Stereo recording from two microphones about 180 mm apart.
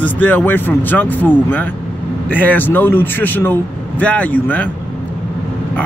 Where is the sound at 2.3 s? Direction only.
10° left (ahead or behind).